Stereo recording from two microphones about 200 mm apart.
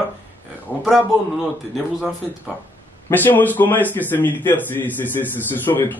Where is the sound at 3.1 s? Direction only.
10° left (ahead or behind).